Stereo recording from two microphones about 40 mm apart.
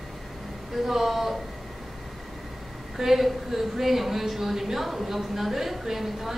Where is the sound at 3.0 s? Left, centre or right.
Centre.